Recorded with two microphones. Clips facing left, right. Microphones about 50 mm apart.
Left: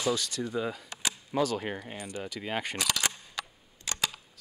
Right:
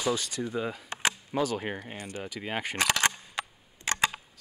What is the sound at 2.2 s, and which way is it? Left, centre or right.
Speech, centre.